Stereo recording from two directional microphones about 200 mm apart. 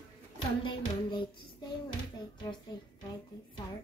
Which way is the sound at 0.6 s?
20° left (ahead or behind).